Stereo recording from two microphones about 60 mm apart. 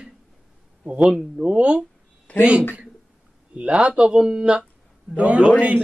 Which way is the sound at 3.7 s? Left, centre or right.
Centre.